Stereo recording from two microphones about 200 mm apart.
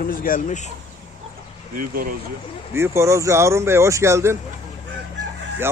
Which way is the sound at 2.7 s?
15° right (ahead or behind).